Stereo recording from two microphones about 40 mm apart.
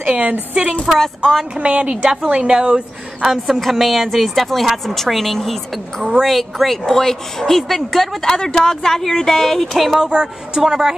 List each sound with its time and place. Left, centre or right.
0.2 s a woman's voice: right
0.9 s speech: centre
1.6 s a woman's voice: right
3.2 s a woman's voice: centre
8.3 s speech: centre
10.0 s a woman's voice: centre